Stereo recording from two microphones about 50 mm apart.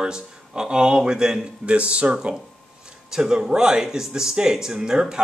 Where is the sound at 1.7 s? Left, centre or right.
Right.